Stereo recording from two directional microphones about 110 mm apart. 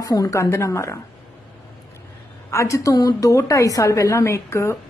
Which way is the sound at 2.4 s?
25° left (ahead or behind).